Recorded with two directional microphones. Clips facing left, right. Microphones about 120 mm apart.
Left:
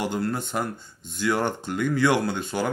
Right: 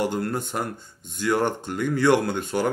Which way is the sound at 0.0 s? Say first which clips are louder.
Right 1 dB; 45° right (ahead or behind).